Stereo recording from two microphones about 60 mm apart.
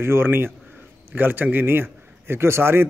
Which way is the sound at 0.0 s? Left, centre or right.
Right.